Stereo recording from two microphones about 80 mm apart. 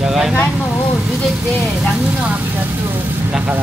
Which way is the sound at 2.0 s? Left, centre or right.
Centre.